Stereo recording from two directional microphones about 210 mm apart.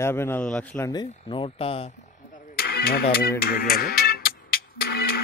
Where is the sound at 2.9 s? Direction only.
45° left (ahead or behind).